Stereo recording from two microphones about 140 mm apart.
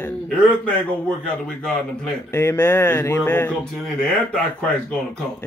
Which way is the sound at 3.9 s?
5° left (ahead or behind).